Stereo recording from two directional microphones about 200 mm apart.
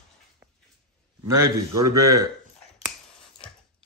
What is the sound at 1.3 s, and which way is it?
Speech, 15° right (ahead or behind).